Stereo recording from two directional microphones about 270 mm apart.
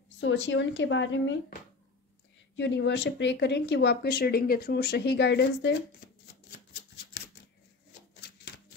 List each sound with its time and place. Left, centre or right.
0.2 s speech: left